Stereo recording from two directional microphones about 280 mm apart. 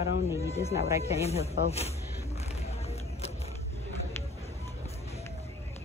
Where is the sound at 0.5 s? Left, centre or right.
Left.